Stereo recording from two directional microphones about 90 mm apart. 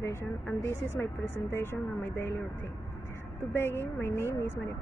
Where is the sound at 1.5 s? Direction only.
25° left (ahead or behind).